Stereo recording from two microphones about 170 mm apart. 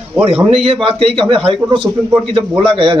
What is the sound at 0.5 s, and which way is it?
A man's voice, 35° right (ahead or behind).